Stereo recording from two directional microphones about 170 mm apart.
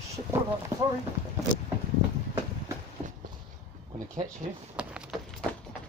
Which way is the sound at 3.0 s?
45° right (ahead or behind).